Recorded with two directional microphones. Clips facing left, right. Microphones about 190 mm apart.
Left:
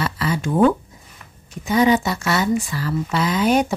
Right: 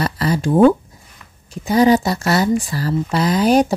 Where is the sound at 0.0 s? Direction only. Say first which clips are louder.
Right 4 dB; 40° right (ahead or behind).